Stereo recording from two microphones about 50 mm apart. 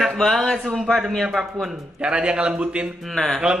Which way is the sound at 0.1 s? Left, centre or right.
Centre.